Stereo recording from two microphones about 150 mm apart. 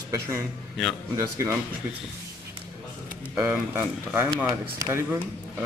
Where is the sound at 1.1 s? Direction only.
20° right (ahead or behind).